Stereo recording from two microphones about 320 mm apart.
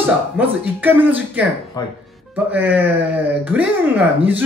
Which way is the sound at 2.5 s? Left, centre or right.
Centre.